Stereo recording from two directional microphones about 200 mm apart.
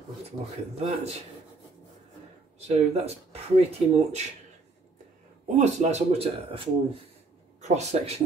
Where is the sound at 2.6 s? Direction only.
30° right (ahead or behind).